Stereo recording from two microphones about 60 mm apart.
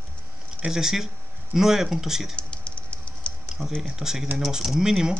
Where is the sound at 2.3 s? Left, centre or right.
Centre.